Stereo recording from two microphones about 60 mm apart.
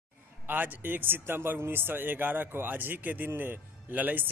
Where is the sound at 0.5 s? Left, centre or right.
Right.